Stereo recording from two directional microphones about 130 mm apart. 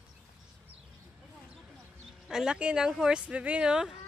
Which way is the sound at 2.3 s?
5° right (ahead or behind).